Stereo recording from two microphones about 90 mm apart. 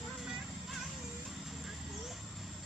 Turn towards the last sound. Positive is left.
turn(degrees=-5)  # may be behind; listen again after turning